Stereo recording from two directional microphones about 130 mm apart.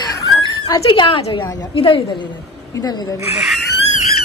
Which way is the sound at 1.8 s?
40° left (ahead or behind).